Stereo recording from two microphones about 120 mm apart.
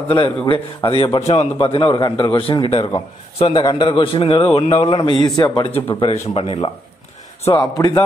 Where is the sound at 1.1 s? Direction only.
60° left (ahead or behind).